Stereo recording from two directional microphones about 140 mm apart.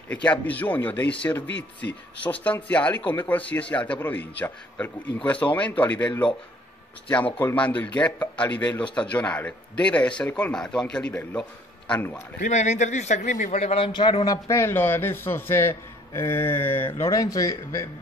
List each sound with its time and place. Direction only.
0.1 s a man's voice: 10° left (ahead or behind)
12.4 s a man's voice: 55° left (ahead or behind)
13.7 s a man's voice: 35° left (ahead or behind)
14.2 s a man's voice: 25° left (ahead or behind)